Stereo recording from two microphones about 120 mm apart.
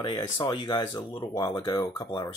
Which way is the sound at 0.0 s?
40° left (ahead or behind).